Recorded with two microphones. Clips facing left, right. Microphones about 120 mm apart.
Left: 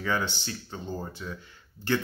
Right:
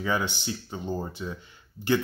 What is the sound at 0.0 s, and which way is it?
Speech, 15° right (ahead or behind).